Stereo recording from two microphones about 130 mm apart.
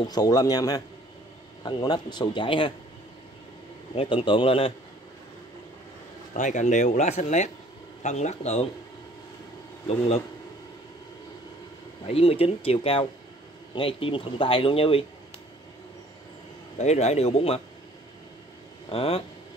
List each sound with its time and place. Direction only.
0.0 s a man's voice: 30° left (ahead or behind)
3.9 s speech: 45° left (ahead or behind)
6.3 s a man's voice: 65° left (ahead or behind)
9.8 s speech: 50° left (ahead or behind)
12.1 s speech: 50° left (ahead or behind)
16.7 s a man's voice: 60° left (ahead or behind)
18.9 s speech: 45° left (ahead or behind)